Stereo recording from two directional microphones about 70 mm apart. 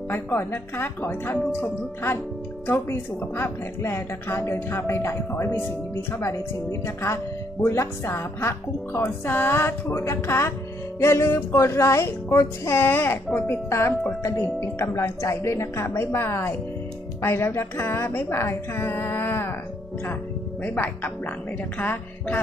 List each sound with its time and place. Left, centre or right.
0.1 s speech: left
2.6 s speech: left
6.1 s a woman's voice: left
13.7 s a woman's voice: left
20.6 s speech: left